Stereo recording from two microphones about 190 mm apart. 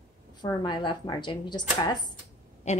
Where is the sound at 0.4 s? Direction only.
25° left (ahead or behind).